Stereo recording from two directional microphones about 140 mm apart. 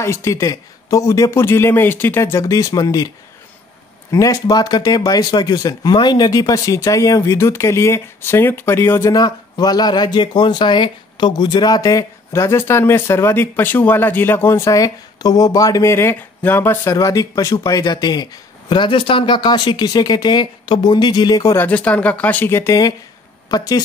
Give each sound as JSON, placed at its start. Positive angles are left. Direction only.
{"t": 0.0, "sound": "speech", "side_deg": 20}
{"t": 4.1, "sound": "speech", "side_deg": 25}
{"t": 9.1, "sound": "speech", "side_deg": 30}
{"t": 21.6, "sound": "speech", "side_deg": 10}